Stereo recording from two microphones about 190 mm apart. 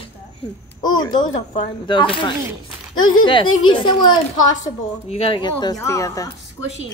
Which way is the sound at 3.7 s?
25° left (ahead or behind).